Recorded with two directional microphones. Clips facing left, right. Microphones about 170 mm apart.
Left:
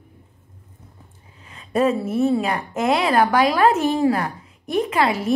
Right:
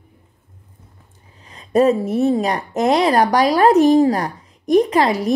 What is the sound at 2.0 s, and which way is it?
Speech, 40° right (ahead or behind).